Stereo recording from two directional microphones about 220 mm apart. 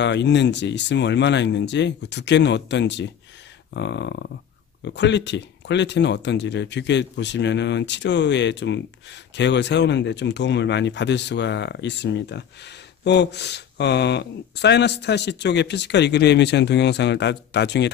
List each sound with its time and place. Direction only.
0.0 s speech: 55° left (ahead or behind)